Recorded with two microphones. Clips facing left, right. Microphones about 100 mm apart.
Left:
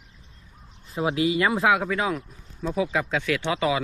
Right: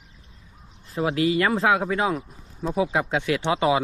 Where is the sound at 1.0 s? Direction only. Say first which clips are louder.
Right 1 dB; 15° left (ahead or behind).